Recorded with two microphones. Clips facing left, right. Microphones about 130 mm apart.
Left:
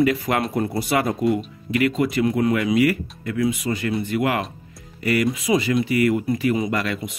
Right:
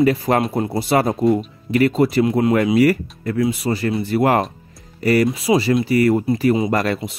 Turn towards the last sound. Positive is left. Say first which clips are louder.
# right 5 dB
turn(degrees=-25)  # may be behind; listen again after turning